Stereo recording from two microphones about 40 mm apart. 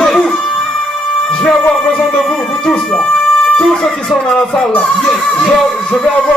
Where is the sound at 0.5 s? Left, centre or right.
Centre.